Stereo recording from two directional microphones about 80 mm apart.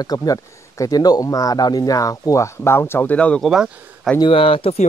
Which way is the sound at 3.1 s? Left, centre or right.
Centre.